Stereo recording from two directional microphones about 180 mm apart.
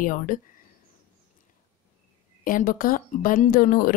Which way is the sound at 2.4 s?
50° left (ahead or behind).